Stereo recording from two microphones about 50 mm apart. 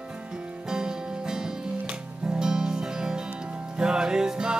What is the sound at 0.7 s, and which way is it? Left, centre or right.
Music, centre.